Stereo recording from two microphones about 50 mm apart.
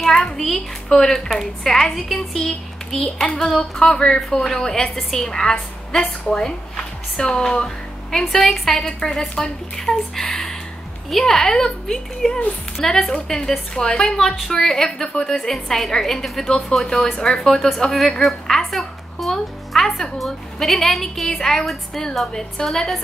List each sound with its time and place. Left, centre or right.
0.0 s a woman's voice: centre